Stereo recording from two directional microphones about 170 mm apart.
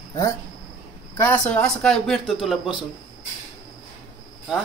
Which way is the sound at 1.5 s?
5° left (ahead or behind).